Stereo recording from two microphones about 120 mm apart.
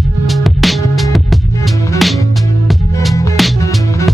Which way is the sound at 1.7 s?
25° left (ahead or behind).